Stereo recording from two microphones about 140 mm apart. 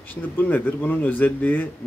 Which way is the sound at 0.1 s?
10° left (ahead or behind).